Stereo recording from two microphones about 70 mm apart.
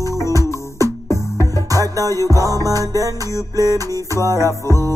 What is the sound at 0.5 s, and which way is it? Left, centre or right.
Music, left.